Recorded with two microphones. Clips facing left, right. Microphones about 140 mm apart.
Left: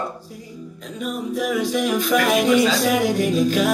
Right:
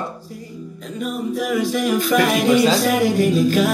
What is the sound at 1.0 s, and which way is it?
Music, centre (ahead or behind).